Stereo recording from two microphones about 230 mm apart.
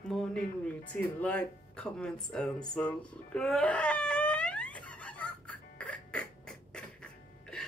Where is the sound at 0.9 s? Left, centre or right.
Centre.